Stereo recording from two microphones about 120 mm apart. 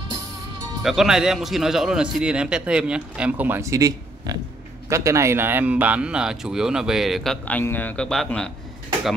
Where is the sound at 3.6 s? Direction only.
25° right (ahead or behind); by 7.6 s 5° left (ahead or behind).